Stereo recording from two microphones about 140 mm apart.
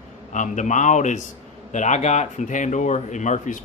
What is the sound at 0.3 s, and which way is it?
Speech, 60° left (ahead or behind).